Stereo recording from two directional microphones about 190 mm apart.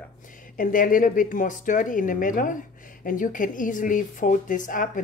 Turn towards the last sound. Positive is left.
turn(degrees=45)  # may be behind; listen again after turning